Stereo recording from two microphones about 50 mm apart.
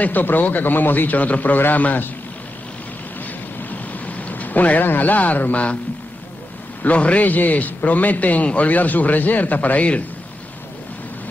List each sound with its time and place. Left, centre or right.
0.0 s a man's voice: left
3.7 s a sound: left
6.8 s a man's voice: left